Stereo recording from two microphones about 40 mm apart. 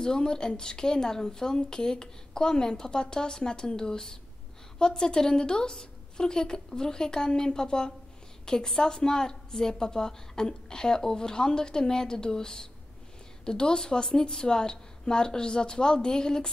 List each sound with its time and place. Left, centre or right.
0.0 s a woman's voice: centre